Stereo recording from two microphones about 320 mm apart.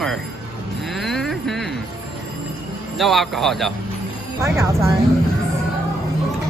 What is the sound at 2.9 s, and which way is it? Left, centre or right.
Speech, centre.